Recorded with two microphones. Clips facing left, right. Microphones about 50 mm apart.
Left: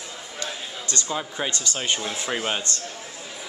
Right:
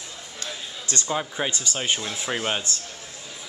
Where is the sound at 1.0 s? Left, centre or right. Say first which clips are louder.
Right 3 dB; centre.